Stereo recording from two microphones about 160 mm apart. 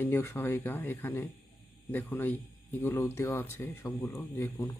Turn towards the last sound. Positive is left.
turn(degrees=10)  # may be behind; listen again after turning